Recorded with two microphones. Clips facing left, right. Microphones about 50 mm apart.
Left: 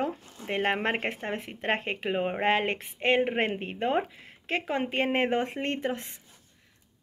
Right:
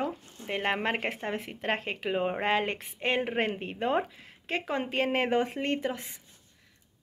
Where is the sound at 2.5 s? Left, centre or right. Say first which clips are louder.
Left 1 dB; left.